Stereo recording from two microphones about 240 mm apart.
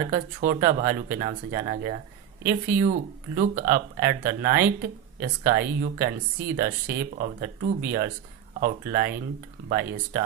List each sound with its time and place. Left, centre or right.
0.1 s speech: right